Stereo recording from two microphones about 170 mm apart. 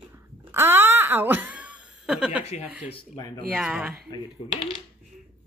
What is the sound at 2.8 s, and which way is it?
Speech, 30° left (ahead or behind).